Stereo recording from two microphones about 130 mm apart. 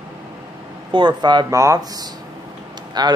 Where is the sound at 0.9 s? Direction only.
35° right (ahead or behind).